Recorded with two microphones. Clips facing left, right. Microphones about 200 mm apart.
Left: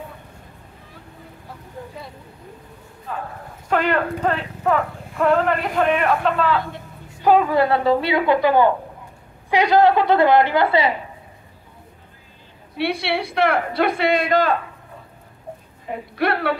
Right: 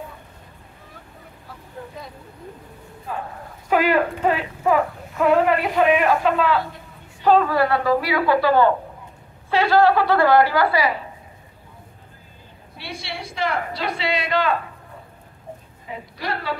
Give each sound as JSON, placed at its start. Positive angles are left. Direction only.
{"t": 3.1, "sound": "speech", "side_deg": -10}
{"t": 7.2, "sound": "a woman's voice", "side_deg": 15}
{"t": 12.7, "sound": "a woman's voice", "side_deg": 65}
{"t": 15.9, "sound": "a woman's voice", "side_deg": 60}